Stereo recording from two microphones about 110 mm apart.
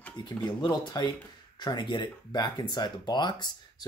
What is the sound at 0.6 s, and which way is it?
Speech, 40° left (ahead or behind).